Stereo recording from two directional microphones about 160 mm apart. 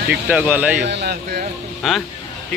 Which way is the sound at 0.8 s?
90° right.